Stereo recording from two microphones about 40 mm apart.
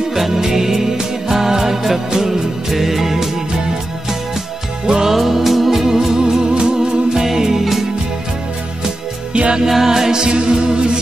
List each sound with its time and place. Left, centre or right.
0.1 s music: centre
4.8 s music: centre
5.1 s music: centre
7.2 s music: centre
9.3 s music: right
9.7 s music: centre